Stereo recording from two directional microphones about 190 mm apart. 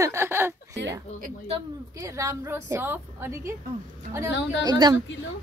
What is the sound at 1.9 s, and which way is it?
A woman's voice, 15° right (ahead or behind).